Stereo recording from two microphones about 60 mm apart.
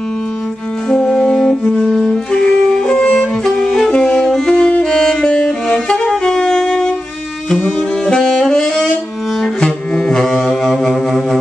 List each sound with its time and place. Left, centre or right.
0.8 s music: centre
7.6 s saxophone: centre
8.5 s music: centre